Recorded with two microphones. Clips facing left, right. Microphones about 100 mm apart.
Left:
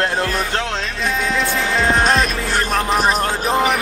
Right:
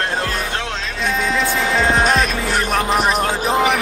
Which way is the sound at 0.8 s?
Centre (ahead or behind).